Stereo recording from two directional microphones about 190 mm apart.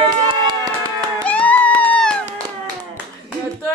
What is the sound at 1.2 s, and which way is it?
Music, 5° left (ahead or behind).